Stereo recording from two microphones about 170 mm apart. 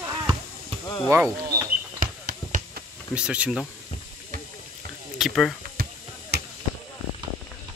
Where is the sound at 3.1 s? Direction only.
5° right (ahead or behind).